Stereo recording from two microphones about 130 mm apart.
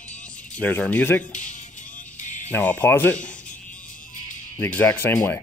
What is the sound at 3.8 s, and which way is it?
Music, 90° left.